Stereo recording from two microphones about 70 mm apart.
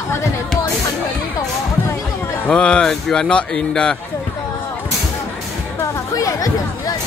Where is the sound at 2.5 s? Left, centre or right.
Centre.